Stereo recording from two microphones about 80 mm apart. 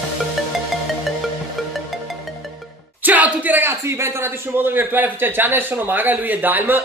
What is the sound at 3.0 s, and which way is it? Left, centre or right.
Speech, centre.